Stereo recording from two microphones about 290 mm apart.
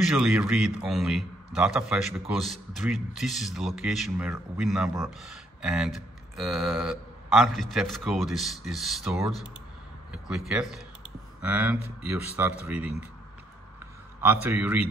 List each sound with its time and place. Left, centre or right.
0.2 s a man's voice: centre
14.2 s a man's voice: centre